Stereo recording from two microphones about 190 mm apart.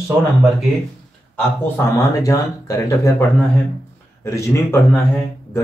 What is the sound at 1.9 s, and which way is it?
Speech, 15° left (ahead or behind).